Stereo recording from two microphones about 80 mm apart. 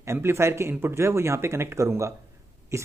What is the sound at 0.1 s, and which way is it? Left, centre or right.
Speech, right.